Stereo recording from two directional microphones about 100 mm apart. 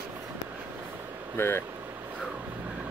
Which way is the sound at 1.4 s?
20° left (ahead or behind).